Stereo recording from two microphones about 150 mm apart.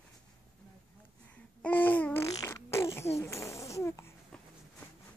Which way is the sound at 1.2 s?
10° left (ahead or behind).